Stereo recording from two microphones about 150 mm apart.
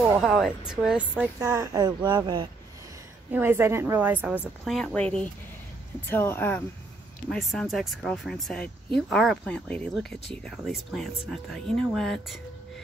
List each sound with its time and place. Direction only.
0.2 s a woman's voice: centre (ahead or behind); by 2.4 s 30° right (ahead or behind)
3.3 s a woman's voice: 15° right (ahead or behind)
4.6 s speech: 5° left (ahead or behind)
7.2 s speech: 5° left (ahead or behind)